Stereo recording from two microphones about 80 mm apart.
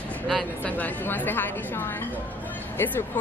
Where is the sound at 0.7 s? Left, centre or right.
Left.